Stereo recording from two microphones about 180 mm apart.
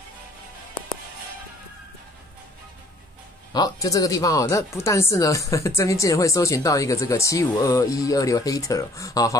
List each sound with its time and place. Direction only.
3.5 s speech: 20° left (ahead or behind)